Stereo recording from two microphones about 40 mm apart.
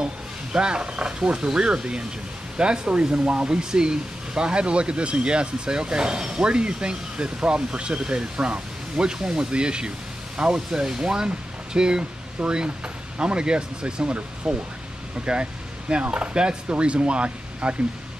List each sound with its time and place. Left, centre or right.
0.0 s speech: right
12.0 s speech: right